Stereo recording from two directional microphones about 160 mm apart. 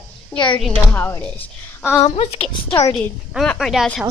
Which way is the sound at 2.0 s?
40° left (ahead or behind).